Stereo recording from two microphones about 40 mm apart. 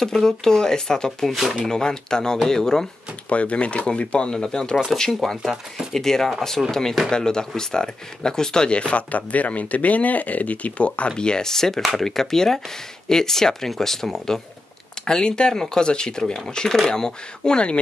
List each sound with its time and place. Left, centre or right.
0.0 s speech: centre
1.2 s speech: centre
1.6 s speech: centre
3.3 s speech: left
9.1 s speech: left